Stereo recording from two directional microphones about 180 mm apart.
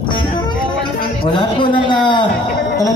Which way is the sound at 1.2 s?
25° left (ahead or behind).